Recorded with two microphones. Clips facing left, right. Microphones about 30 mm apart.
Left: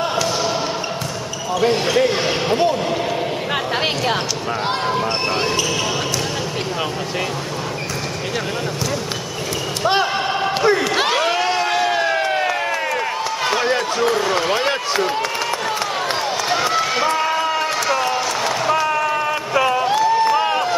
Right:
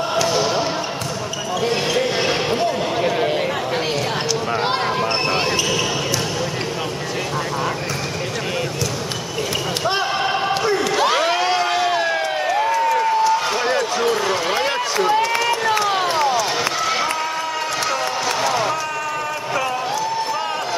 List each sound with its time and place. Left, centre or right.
0.1 s basketball bounce: centre
1.6 s speech: centre
4.6 s speech: centre
11.1 s a sound: centre
13.7 s basketball bounce: centre
14.7 s run: centre
17.8 s a sound: centre
19.5 s a sound: left
19.9 s crowd: left